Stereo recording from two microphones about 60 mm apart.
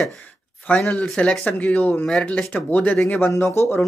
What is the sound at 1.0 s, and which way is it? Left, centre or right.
Speech, centre.